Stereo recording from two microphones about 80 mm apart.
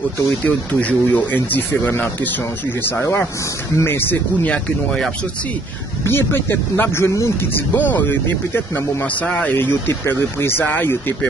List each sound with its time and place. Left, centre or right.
0.4 s speech: centre
6.0 s speech: left
7.7 s speech: left